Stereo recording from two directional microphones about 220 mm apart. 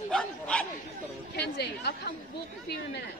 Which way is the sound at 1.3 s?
50° left (ahead or behind).